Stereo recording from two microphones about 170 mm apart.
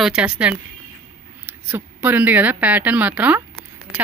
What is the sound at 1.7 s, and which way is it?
A woman's voice, 10° right (ahead or behind).